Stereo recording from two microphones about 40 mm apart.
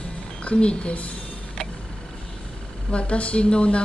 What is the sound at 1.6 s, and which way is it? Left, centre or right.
Tick-tock, centre.